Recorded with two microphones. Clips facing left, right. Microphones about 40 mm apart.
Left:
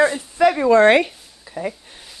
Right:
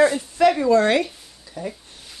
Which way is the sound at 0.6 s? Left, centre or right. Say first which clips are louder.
Left 4 dB; left.